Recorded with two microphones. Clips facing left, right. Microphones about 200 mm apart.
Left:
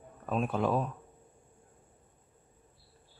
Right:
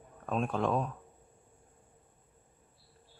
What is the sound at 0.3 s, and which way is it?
Speech, 5° left (ahead or behind).